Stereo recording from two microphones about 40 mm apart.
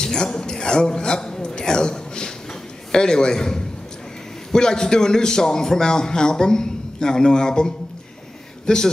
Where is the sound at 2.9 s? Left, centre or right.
Centre.